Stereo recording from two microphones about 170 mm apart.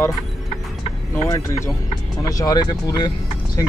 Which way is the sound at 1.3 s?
15° left (ahead or behind).